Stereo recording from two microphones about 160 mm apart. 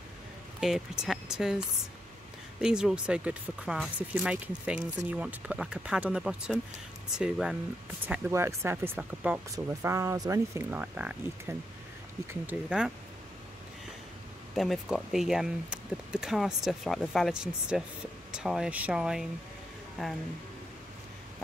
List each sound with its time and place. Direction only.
0.6 s speech: centre (ahead or behind)
2.6 s speech: 5° right (ahead or behind)
8.3 s speech: 20° right (ahead or behind)
14.5 s speech: centre (ahead or behind)